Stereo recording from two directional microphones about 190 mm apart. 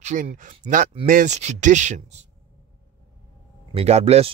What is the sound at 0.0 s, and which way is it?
Speech, 40° right (ahead or behind).